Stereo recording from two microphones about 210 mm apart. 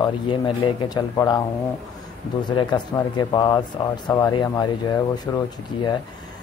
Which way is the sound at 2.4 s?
20° left (ahead or behind).